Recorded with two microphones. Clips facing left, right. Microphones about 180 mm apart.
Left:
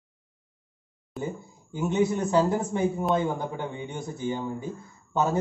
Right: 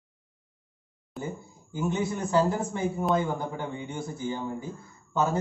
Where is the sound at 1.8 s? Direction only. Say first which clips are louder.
Left 4 dB; 20° left (ahead or behind).